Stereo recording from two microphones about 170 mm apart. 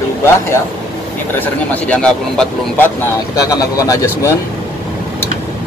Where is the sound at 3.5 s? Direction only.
20° left (ahead or behind).